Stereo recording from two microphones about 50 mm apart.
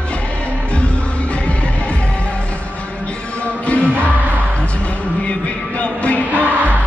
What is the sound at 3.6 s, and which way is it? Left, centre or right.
Music, left.